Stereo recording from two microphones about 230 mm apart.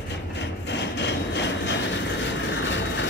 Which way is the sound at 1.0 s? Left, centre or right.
Left.